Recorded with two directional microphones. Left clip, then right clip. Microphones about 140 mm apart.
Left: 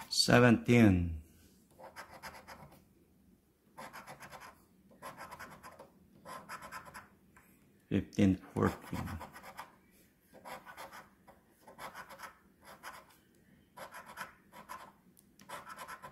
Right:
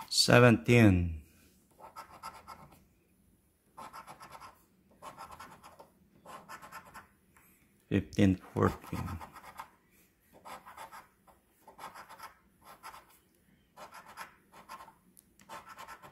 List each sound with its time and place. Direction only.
0.1 s speech: 35° right (ahead or behind)
7.9 s speech: 35° right (ahead or behind)
15.3 s scratch: 10° left (ahead or behind)